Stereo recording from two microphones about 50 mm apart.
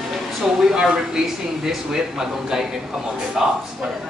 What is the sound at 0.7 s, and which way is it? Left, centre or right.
Speech, centre.